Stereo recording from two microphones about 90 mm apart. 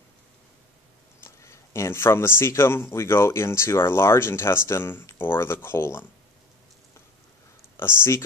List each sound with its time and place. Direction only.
1.2 s speech: 30° left (ahead or behind)
7.7 s speech: 25° left (ahead or behind)